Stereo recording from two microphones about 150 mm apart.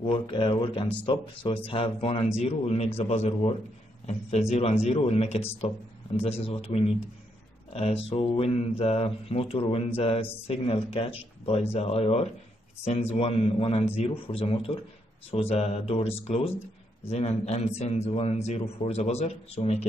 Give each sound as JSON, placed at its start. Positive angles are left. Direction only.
{"t": 0.0, "sound": "a man's voice", "side_deg": 35}